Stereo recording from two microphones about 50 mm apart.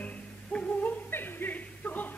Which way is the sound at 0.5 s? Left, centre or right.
Left.